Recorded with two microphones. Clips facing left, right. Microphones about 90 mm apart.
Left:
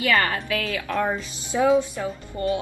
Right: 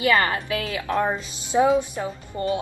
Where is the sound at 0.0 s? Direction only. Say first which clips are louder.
Right 2 dB; 25° right (ahead or behind).